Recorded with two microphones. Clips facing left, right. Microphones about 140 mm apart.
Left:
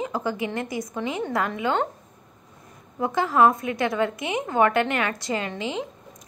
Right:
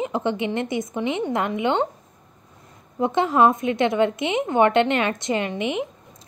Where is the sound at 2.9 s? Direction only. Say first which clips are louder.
Right 2 dB; 25° right (ahead or behind).